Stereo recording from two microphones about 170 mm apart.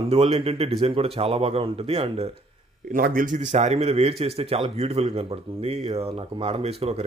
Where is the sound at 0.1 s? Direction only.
35° right (ahead or behind).